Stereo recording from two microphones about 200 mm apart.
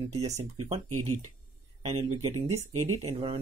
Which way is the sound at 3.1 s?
30° right (ahead or behind).